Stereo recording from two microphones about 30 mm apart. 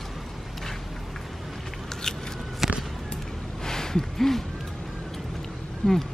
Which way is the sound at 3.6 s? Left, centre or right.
Centre.